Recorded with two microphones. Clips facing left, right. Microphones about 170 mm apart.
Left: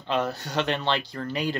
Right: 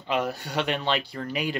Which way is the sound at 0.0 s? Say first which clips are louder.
Even; 10° right (ahead or behind).